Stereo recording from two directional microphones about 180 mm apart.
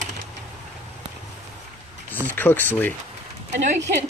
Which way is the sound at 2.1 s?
10° left (ahead or behind).